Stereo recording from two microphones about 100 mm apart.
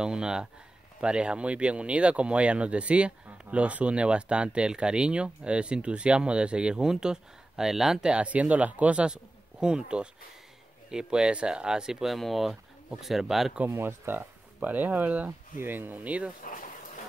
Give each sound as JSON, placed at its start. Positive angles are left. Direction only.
{"t": 0.0, "sound": "speech", "side_deg": -10}
{"t": 13.7, "sound": "speech", "side_deg": -25}